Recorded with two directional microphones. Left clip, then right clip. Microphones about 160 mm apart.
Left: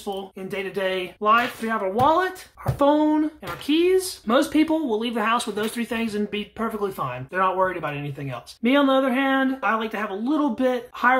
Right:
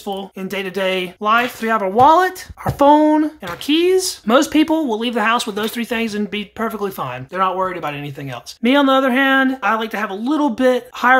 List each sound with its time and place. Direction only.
0.0 s speech: 35° right (ahead or behind)